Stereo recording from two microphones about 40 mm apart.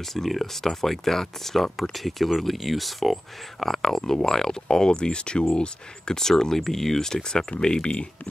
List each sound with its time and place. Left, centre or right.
0.1 s speech: centre; by 8.1 s left